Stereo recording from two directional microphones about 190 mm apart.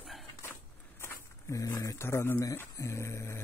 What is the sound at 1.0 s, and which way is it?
Speech, 15° left (ahead or behind).